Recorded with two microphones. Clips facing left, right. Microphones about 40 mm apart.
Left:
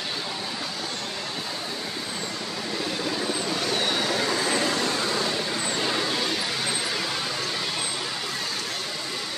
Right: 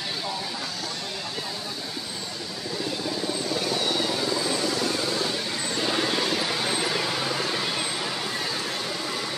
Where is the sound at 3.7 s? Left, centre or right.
Left.